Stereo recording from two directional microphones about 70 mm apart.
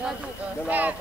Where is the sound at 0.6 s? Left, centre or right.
Right.